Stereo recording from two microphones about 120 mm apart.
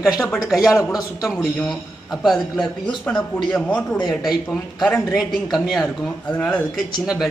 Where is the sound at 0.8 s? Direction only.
30° left (ahead or behind).